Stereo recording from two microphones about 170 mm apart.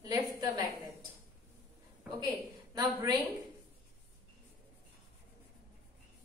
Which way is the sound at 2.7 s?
20° right (ahead or behind).